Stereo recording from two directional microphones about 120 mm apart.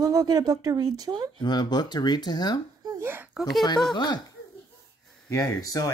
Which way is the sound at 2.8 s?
30° right (ahead or behind).